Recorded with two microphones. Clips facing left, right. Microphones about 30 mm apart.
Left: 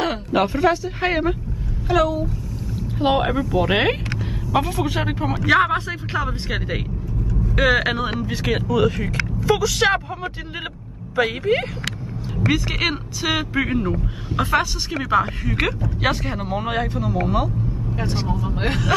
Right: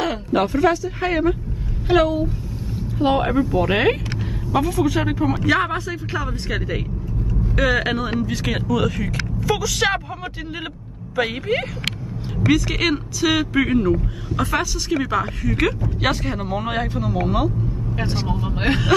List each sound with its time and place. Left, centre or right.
0.0 s a sound: centre
0.8 s speech: centre
1.9 s a woman's voice: right
3.0 s speech: centre
11.1 s speech: centre
12.4 s a woman's voice: centre
16.0 s speech: centre
18.2 s speech: right
18.9 s speech: centre